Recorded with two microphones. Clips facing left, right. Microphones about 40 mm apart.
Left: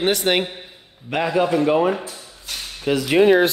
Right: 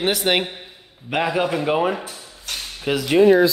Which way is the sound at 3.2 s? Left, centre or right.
Left.